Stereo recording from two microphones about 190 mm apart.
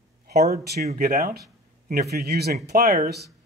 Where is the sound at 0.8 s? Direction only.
45° right (ahead or behind).